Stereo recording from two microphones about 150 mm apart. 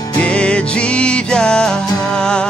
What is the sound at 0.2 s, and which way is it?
Music, 5° left (ahead or behind).